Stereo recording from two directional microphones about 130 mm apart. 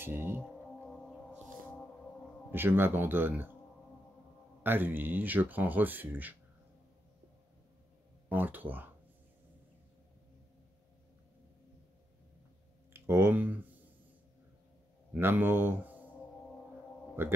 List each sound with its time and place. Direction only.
0.0 s speech: 15° right (ahead or behind)
2.5 s speech: 15° right (ahead or behind)
4.6 s speech: 15° right (ahead or behind)
8.3 s speech: 15° right (ahead or behind)
12.9 s speech: 20° right (ahead or behind)
15.1 s speech: 15° right (ahead or behind)
17.2 s speech: 20° right (ahead or behind)